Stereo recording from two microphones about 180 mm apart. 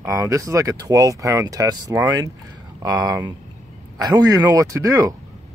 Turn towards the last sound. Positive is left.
turn(degrees=-20)  # may be behind; listen again after turning